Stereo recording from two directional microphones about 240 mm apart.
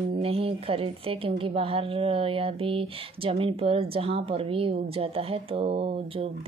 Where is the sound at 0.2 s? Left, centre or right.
Right.